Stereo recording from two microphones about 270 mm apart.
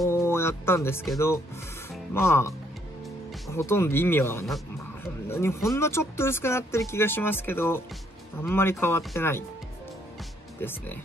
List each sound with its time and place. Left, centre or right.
0.0 s speech: centre
10.6 s speech: centre